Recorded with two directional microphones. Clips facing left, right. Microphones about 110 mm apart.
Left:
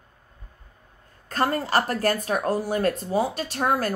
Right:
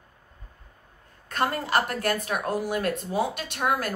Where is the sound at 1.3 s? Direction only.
35° left (ahead or behind).